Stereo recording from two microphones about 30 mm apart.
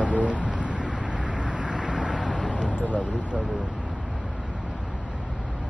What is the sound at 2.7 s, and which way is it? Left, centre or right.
Vehicle, left.